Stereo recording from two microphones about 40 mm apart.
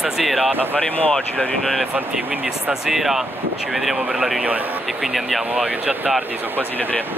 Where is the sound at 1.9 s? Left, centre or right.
Right.